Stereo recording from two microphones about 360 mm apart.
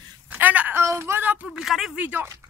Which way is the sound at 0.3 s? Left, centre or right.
Centre.